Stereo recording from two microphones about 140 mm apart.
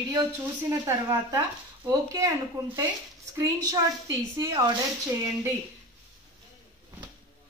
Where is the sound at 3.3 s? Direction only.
25° right (ahead or behind).